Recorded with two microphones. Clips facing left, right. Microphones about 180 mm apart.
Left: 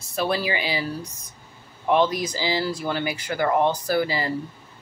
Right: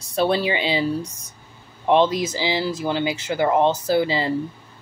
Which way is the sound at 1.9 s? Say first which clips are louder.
Right 3 dB; 25° right (ahead or behind).